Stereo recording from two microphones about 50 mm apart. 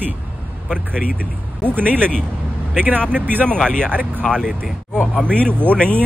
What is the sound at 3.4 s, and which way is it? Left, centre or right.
Speech, centre.